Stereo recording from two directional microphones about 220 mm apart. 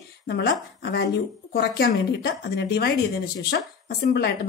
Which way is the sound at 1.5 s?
45° left (ahead or behind).